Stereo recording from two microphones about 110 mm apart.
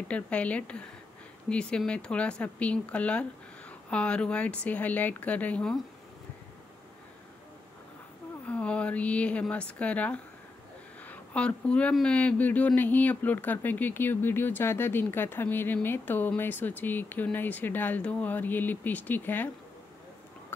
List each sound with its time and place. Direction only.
0.1 s speech: 10° left (ahead or behind)
8.5 s speech: 10° left (ahead or behind)